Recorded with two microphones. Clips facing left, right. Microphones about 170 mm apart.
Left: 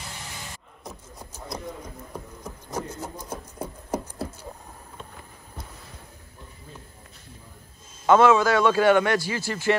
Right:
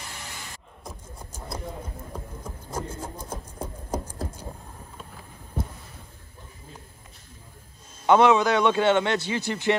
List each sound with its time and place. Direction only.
2.4 s rub: 10° right (ahead or behind)
3.3 s a sound: 10° left (ahead or behind)
8.1 s a man's voice: 20° right (ahead or behind)